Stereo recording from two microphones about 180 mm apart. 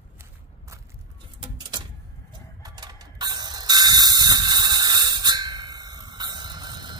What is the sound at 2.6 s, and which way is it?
Ratchet, 20° right (ahead or behind).